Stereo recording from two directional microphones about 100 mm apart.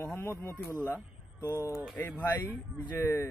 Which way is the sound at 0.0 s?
25° left (ahead or behind).